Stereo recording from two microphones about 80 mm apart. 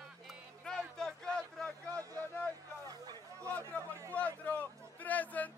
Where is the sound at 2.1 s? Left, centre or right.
Left.